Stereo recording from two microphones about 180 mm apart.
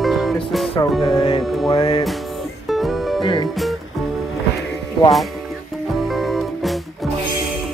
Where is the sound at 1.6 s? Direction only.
25° left (ahead or behind).